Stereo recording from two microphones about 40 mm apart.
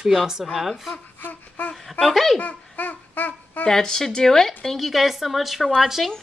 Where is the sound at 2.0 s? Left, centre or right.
Centre.